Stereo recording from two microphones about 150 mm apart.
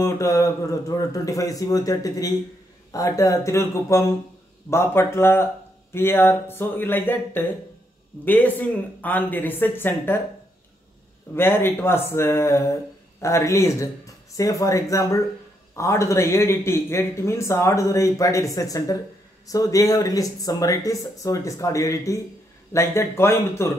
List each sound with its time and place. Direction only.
0.0 s speech: 20° left (ahead or behind)
11.3 s speech: 15° left (ahead or behind)